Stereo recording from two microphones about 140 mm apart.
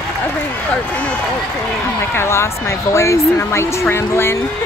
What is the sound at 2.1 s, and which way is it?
Speech, 20° left (ahead or behind).